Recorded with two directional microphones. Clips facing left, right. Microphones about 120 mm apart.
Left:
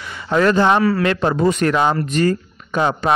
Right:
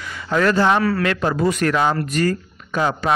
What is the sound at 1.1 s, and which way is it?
Speech, 25° left (ahead or behind).